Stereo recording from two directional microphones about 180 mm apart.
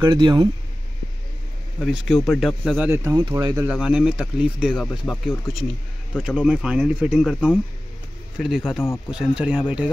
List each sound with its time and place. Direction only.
0.0 s speech: 25° right (ahead or behind)
1.8 s speech: centre (ahead or behind)
2.9 s speech: 15° right (ahead or behind)
3.6 s speech: 5° right (ahead or behind)
4.8 s speech: 5° left (ahead or behind)